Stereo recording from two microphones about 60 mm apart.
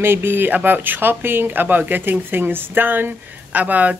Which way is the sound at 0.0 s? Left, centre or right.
Right.